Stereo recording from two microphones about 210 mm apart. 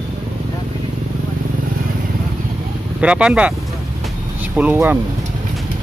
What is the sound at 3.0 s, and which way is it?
Speech, 5° right (ahead or behind).